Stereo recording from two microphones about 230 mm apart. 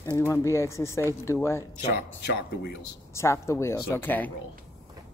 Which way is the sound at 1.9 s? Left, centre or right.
Left.